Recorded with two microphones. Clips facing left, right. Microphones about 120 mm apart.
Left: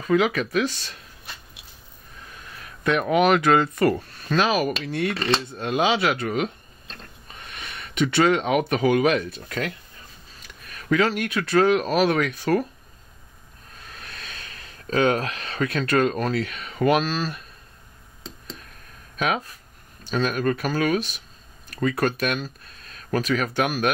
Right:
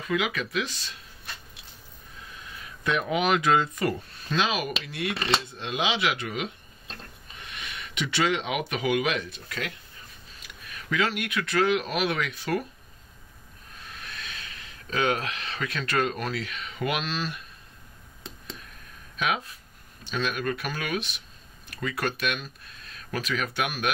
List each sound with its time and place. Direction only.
0.0 s speech: 40° left (ahead or behind)
2.5 s speech: 55° left (ahead or behind)
4.5 s speech: 40° left (ahead or behind)
13.9 s speech: 40° left (ahead or behind)
19.1 s speech: 45° left (ahead or behind)